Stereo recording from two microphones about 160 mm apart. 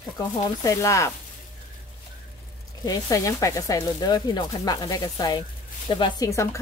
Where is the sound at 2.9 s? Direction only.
20° left (ahead or behind).